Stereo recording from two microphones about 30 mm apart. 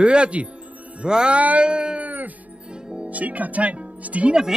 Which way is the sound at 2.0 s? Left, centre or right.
Right.